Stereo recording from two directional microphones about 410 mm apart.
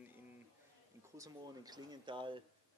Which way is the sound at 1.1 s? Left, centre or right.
Centre.